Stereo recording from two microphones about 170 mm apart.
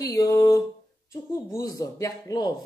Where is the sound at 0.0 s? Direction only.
20° left (ahead or behind).